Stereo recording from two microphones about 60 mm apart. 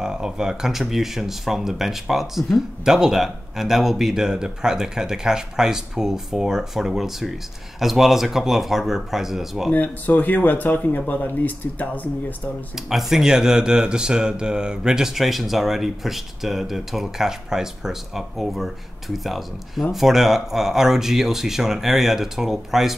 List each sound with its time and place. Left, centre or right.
0.0 s speech: centre
9.7 s speech: left
12.7 s speech: centre